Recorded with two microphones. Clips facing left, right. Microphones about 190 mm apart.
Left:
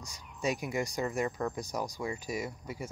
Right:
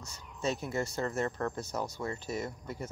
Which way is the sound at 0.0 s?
15° left (ahead or behind).